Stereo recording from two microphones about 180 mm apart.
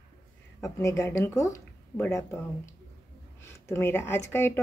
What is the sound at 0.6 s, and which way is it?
Speech, 15° left (ahead or behind).